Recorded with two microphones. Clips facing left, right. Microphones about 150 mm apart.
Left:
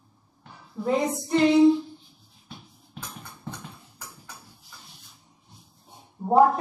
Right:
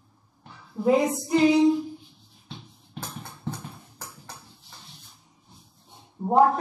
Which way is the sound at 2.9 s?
35° right (ahead or behind).